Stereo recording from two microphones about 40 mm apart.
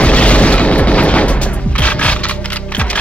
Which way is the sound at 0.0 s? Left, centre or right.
Left.